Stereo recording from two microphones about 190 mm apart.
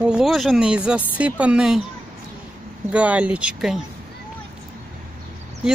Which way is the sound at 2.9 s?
5° right (ahead or behind).